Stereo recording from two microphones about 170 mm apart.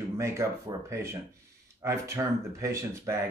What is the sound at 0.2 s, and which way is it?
Speech, 15° right (ahead or behind).